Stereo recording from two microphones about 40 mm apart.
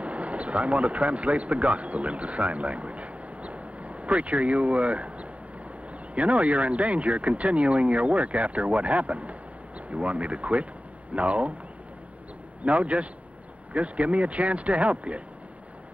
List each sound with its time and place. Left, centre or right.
0.0 s speech: right
12.6 s speech: right